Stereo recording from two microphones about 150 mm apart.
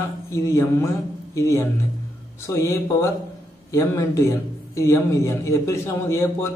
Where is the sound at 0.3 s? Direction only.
20° left (ahead or behind).